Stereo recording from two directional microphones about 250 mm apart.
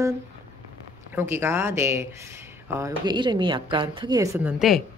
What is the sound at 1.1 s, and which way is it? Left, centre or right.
Speech, centre.